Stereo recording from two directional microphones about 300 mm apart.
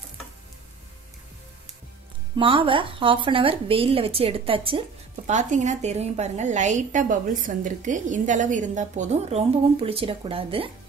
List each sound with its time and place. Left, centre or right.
2.3 s speech: centre